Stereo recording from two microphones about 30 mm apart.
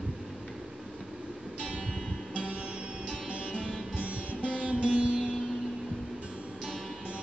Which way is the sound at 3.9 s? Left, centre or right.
Right.